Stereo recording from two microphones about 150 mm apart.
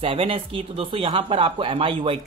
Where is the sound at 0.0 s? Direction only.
40° right (ahead or behind).